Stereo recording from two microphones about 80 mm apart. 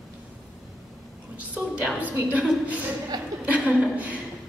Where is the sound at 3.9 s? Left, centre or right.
Centre.